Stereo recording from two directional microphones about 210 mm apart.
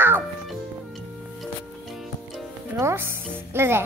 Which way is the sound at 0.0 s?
10° right (ahead or behind).